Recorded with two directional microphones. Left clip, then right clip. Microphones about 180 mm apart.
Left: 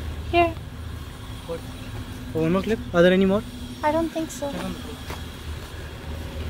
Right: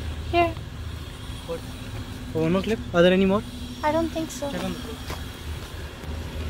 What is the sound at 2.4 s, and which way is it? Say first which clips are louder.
Speech: left 1 dB; 25° left (ahead or behind).